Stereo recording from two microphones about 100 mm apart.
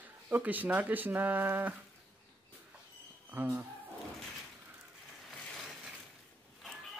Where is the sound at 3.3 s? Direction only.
20° right (ahead or behind).